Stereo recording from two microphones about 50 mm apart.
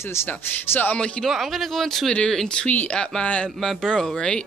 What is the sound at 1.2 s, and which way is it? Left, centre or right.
Speech, centre.